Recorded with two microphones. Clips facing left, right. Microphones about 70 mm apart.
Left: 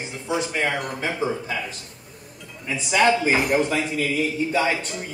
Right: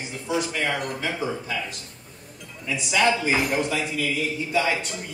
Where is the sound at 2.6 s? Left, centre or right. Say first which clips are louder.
Left 3 dB; left.